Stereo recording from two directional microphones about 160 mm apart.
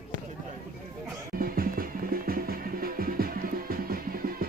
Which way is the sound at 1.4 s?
65° right (ahead or behind).